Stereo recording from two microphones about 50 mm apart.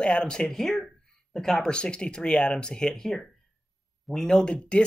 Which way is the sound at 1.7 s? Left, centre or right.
Centre.